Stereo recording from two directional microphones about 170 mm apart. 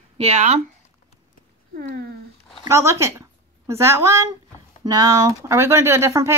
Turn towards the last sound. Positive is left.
turn(degrees=-15)  # may be behind; listen again after turning